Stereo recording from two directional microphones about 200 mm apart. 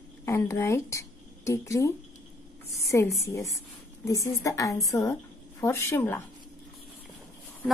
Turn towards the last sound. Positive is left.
turn(degrees=10)  # may be behind; listen again after turning